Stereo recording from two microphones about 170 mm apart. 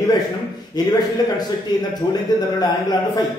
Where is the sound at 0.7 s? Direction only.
25° left (ahead or behind).